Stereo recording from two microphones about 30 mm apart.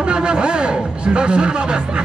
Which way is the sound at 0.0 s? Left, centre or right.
Right.